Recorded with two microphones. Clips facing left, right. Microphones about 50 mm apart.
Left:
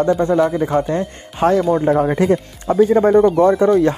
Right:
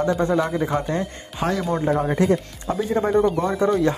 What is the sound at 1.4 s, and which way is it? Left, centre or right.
Speech, left.